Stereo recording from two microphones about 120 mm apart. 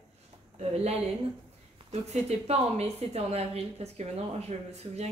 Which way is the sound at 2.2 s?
60° right (ahead or behind).